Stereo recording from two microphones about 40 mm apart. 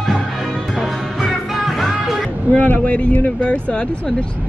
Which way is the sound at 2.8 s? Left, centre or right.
Left.